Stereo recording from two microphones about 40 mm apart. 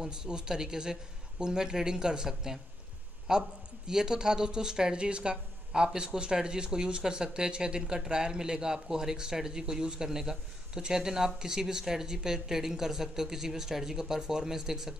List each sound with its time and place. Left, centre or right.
0.0 s speech: right